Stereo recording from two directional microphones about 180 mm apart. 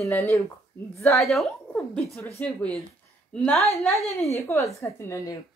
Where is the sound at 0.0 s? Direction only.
15° left (ahead or behind).